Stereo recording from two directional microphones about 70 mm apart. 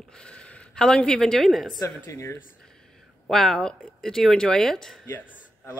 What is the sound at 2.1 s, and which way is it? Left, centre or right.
Speech, left.